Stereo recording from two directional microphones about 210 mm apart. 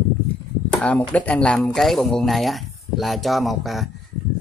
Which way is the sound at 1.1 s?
5° left (ahead or behind).